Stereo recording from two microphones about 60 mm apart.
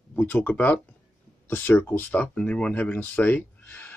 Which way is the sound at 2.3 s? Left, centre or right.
Centre.